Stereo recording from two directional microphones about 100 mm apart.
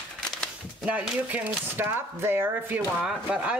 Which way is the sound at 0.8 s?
15° right (ahead or behind).